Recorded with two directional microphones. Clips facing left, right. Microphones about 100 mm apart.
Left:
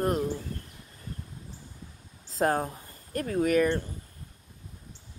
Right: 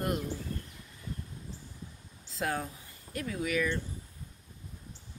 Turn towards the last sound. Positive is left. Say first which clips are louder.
# left 8 dB
turn(degrees=50)  # may be behind; listen again after turning